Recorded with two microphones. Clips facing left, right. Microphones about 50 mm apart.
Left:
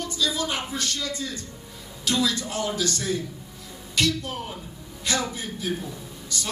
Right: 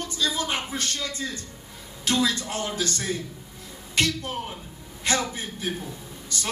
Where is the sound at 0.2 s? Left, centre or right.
Right.